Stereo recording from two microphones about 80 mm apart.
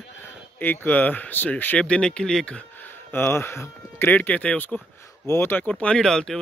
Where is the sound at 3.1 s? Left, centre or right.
Left.